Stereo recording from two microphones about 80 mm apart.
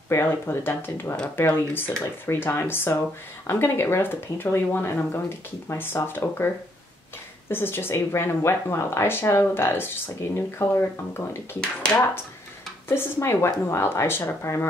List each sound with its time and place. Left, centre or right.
0.1 s speech: left
12.8 s speech: left